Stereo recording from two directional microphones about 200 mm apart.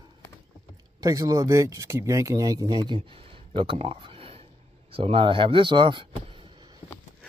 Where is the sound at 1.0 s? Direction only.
20° right (ahead or behind).